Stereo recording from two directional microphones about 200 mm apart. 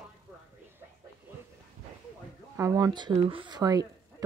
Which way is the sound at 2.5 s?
15° right (ahead or behind).